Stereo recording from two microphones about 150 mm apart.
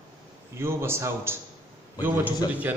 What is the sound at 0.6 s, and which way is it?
A man's voice, 15° right (ahead or behind).